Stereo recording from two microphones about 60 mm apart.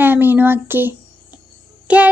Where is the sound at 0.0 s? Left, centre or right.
Right.